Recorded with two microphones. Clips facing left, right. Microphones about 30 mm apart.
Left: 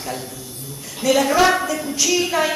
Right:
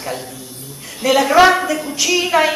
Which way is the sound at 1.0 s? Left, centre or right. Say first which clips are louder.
Right 4 dB; right.